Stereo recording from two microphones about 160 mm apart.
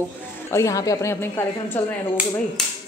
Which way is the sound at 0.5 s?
20° left (ahead or behind).